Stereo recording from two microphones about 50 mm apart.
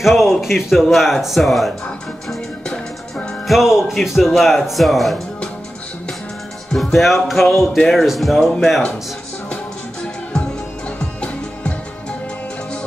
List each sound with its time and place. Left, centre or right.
0.0 s speech: centre
2.6 s music: centre
3.4 s speech: centre
6.7 s speech: centre
11.1 s music: left